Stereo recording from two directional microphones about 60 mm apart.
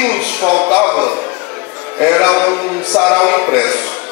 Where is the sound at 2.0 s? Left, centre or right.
Centre.